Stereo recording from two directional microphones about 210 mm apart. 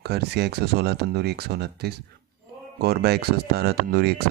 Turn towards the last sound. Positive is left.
turn(degrees=-50)  # may be behind; listen again after turning